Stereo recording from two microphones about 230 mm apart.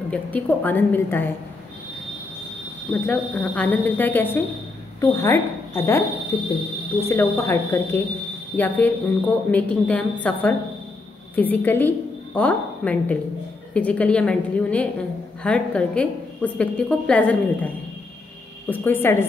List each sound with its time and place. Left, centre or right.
0.1 s speech: centre
2.9 s a woman's voice: centre
18.7 s speech: centre